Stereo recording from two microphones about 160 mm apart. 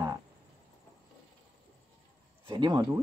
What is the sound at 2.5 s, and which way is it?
Speech, 25° right (ahead or behind).